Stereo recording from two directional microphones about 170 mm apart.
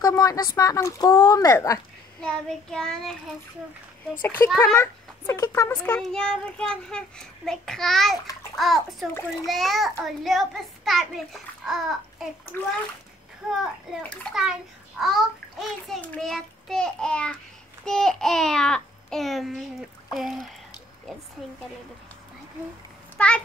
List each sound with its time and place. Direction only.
0.0 s speech: 20° left (ahead or behind)
2.2 s a child's voice: 5° left (ahead or behind)
5.9 s a child's voice: 5° left (ahead or behind)
12.5 s a child's voice: 10° left (ahead or behind)
13.5 s a child's voice: centre (ahead or behind)
23.1 s a child's voice: 5° left (ahead or behind)